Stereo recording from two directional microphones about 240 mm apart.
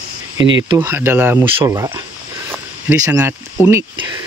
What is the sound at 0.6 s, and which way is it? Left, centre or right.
Speech, centre.